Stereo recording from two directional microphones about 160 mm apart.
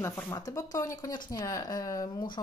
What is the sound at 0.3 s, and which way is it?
Speech, 20° left (ahead or behind).